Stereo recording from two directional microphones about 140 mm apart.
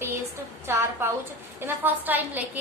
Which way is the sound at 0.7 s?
20° right (ahead or behind).